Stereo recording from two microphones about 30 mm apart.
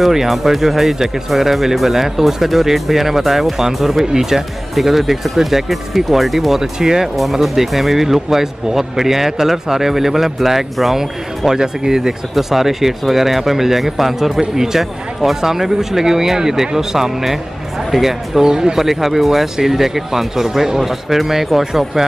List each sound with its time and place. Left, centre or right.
0.0 s speech: centre
6.6 s speech: centre
7.5 s speech: centre
18.4 s speech: right
18.8 s speech: centre